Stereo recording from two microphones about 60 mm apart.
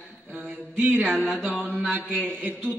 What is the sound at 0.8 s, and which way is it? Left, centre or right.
A man's voice, right.